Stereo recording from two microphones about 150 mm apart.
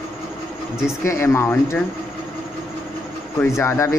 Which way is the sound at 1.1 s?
20° left (ahead or behind).